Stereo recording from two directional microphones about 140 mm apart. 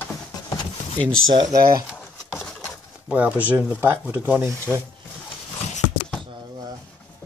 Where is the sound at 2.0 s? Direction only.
5° left (ahead or behind).